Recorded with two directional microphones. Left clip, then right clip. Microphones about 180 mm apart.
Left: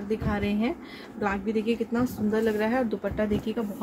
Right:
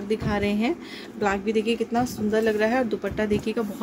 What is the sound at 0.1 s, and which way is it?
Speech, 50° right (ahead or behind).